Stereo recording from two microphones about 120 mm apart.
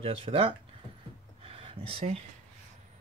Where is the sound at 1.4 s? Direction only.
50° right (ahead or behind).